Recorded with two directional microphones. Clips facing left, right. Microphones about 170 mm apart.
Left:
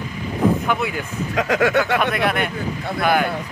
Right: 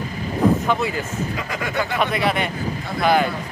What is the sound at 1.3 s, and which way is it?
Speech, 85° left.